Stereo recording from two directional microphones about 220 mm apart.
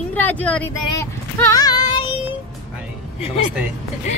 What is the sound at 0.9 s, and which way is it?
Child singing, 15° left (ahead or behind).